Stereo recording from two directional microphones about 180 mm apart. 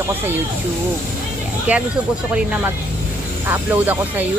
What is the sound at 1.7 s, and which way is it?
Speech, 10° right (ahead or behind).